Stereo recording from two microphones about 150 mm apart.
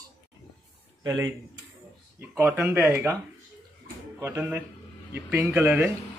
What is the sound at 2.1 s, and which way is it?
Speech, 15° right (ahead or behind).